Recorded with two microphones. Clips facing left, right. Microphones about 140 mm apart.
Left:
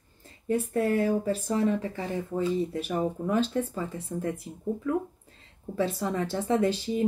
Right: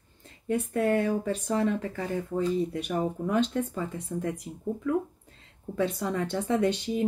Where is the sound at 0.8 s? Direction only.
30° left (ahead or behind).